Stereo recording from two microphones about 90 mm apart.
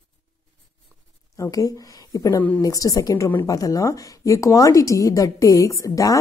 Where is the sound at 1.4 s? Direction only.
40° left (ahead or behind).